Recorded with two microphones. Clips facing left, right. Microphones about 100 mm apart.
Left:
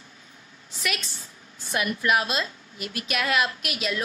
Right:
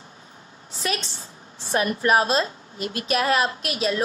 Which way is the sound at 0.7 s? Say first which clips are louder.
Right 4 dB; 30° right (ahead or behind).